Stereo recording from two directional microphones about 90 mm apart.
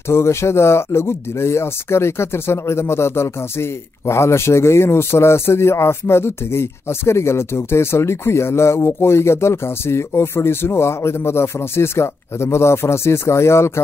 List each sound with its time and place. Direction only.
0.1 s speech: 30° left (ahead or behind)